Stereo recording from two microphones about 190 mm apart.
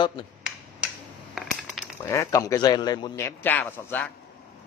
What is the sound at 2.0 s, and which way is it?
Speech, 15° left (ahead or behind).